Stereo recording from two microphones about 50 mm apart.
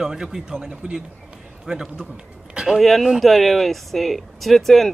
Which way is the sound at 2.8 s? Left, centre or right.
Centre.